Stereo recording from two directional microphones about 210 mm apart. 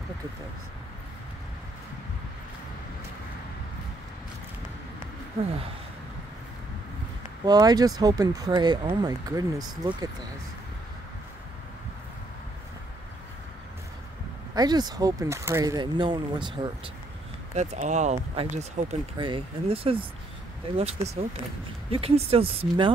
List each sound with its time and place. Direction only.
7.4 s speech: 20° right (ahead or behind)
14.5 s speech: 20° right (ahead or behind)
17.6 s speech: 35° right (ahead or behind)